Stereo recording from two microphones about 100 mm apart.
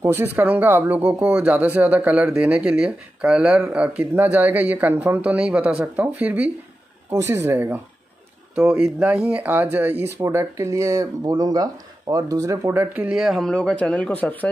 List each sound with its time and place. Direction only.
0.0 s speech: 20° right (ahead or behind)
7.1 s speech: 30° right (ahead or behind)
8.5 s speech: 10° right (ahead or behind)
10.1 s speech: 30° right (ahead or behind)
12.7 s speech: 15° right (ahead or behind)
13.1 s speech: 5° right (ahead or behind)
13.5 s speech: 10° left (ahead or behind)